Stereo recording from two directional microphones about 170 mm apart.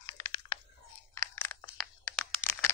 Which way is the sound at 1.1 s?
15° left (ahead or behind).